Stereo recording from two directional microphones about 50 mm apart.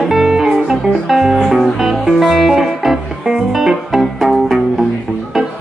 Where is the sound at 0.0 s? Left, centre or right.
Centre.